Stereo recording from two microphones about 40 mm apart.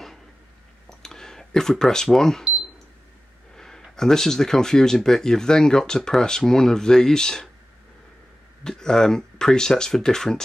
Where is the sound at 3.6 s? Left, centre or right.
Centre.